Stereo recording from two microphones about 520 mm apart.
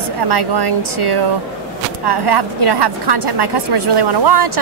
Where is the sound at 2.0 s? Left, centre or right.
Right.